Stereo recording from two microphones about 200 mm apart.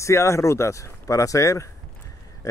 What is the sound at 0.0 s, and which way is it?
Speech, 15° left (ahead or behind).